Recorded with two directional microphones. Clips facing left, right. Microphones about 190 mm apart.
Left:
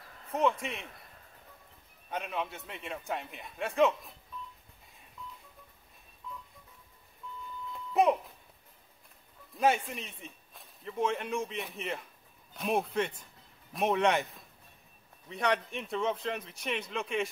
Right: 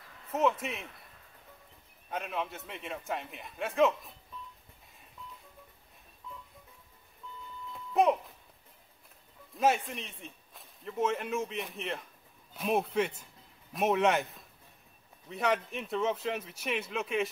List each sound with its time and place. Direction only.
0.3 s speech: 5° right (ahead or behind)
2.0 s speech: centre (ahead or behind)
7.9 s speech: centre (ahead or behind)
9.5 s speech: centre (ahead or behind)